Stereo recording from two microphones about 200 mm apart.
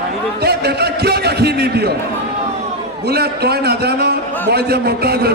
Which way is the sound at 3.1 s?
55° right (ahead or behind).